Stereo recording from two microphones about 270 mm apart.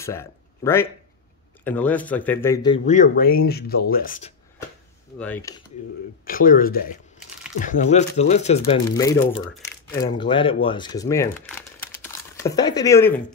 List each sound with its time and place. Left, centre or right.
0.0 s speech: centre
2.9 s speech: left
5.2 s speech: centre
6.2 s speech: left
8.9 s speech: centre